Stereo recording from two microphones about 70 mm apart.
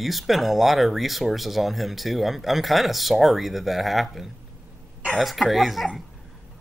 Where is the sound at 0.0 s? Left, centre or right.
Centre.